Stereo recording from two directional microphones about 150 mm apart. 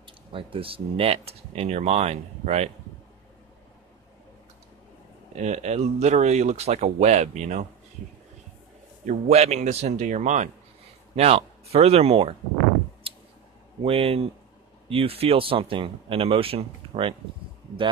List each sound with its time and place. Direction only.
0.0 s speech: 35° right (ahead or behind)
5.3 s speech: 50° right (ahead or behind)
9.0 s speech: 50° right (ahead or behind)
13.8 s speech: 40° right (ahead or behind)